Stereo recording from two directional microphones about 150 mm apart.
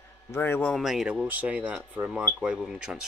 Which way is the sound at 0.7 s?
Centre (ahead or behind).